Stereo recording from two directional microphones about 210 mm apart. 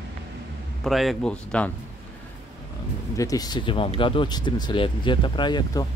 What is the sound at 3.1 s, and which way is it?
Speech, 15° left (ahead or behind).